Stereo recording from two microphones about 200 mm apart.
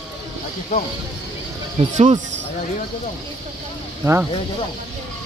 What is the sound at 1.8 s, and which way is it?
Speech, 35° right (ahead or behind).